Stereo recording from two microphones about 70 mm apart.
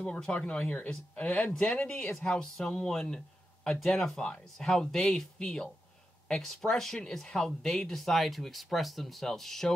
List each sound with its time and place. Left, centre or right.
0.0 s speech: centre